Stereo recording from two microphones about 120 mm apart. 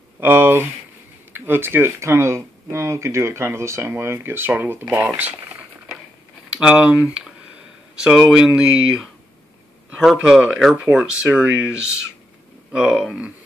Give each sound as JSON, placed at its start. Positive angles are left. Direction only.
{"t": 0.2, "sound": "speech", "side_deg": -15}
{"t": 6.5, "sound": "speech", "side_deg": -10}
{"t": 9.9, "sound": "speech", "side_deg": -5}